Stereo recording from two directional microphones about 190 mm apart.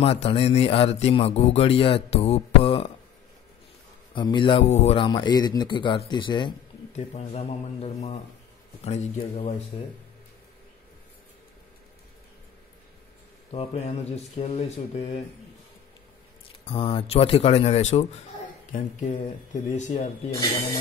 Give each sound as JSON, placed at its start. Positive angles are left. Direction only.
{"t": 0.0, "sound": "speech", "side_deg": 30}
{"t": 4.1, "sound": "speech", "side_deg": 25}
{"t": 4.6, "sound": "speech", "side_deg": 35}
{"t": 13.5, "sound": "speech", "side_deg": 35}
{"t": 16.6, "sound": "speech", "side_deg": 30}